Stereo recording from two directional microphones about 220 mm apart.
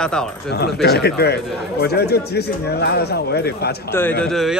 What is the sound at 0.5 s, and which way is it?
A man's voice, 50° left (ahead or behind).